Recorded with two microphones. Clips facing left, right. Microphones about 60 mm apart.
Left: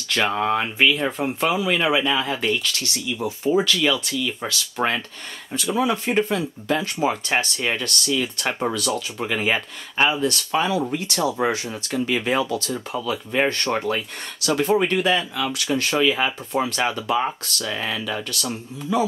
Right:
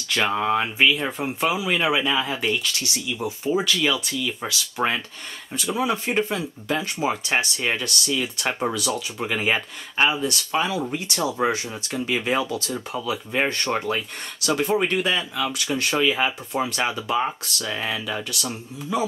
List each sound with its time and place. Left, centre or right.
0.1 s speech: centre
12.4 s speech: centre
12.7 s speech: centre